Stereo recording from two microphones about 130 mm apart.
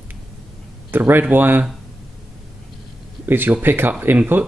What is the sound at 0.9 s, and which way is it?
Speech, 15° right (ahead or behind).